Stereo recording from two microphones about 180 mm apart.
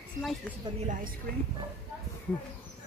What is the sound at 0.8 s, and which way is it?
Speech, 45° right (ahead or behind).